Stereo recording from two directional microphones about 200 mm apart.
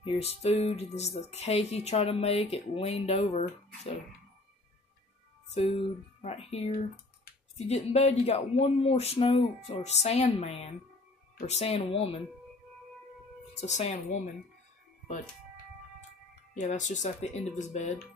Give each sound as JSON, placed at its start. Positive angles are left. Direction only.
{"t": 0.0, "sound": "speech", "side_deg": 30}
{"t": 6.2, "sound": "speech", "side_deg": 30}
{"t": 13.6, "sound": "speech", "side_deg": 35}
{"t": 16.5, "sound": "speech", "side_deg": 40}